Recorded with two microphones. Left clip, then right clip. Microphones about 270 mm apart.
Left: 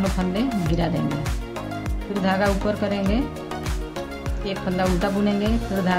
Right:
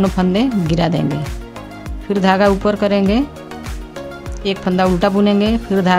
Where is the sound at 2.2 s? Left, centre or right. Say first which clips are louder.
Right 8 dB; right.